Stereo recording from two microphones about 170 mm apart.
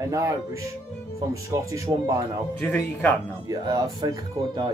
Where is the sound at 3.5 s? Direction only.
20° right (ahead or behind).